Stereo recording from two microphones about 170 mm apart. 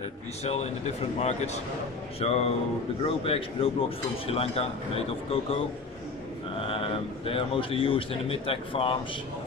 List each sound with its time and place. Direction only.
0.4 s a man's voice: 40° left (ahead or behind)
6.6 s a man's voice: 30° left (ahead or behind)